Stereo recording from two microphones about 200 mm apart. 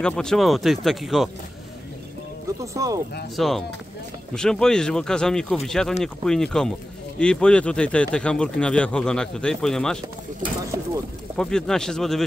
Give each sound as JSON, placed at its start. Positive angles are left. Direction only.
{"t": 0.0, "sound": "speech", "side_deg": 5}
{"t": 2.6, "sound": "speech", "side_deg": -15}
{"t": 3.3, "sound": "speech", "side_deg": 0}
{"t": 11.3, "sound": "speech", "side_deg": 5}